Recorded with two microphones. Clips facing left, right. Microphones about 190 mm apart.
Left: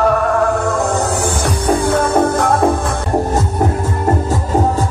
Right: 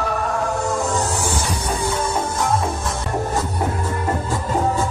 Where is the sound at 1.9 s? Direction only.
55° left (ahead or behind).